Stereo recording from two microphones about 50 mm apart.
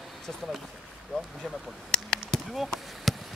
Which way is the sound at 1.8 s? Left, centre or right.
Centre.